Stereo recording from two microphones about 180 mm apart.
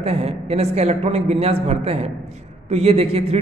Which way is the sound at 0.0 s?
35° right (ahead or behind).